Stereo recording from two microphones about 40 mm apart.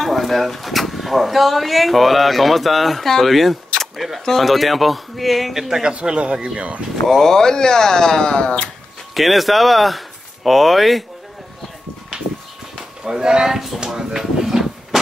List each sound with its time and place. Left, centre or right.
0.0 s speech: centre
4.2 s speech: centre
5.9 s speech: right
7.1 s speech: centre
9.1 s speech: centre
13.0 s speech: centre
13.8 s a sound: centre